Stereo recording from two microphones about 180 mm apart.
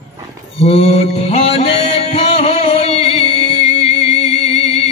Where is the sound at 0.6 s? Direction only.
35° left (ahead or behind).